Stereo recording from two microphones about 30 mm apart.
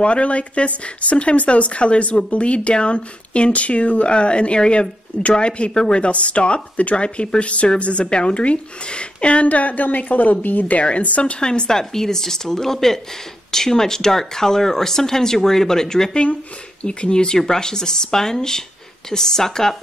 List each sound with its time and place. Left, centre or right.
0.0 s speech: left
9.5 s a woman's voice: left
11.0 s speech: left
11.3 s speech: left
11.9 s speech: centre
16.8 s speech: left